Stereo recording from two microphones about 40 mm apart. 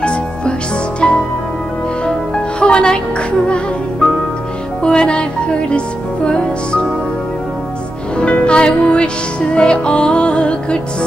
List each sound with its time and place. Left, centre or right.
0.0 s music: left
4.8 s music: left
8.2 s music: left